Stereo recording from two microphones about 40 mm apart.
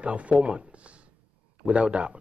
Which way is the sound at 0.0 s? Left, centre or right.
Right.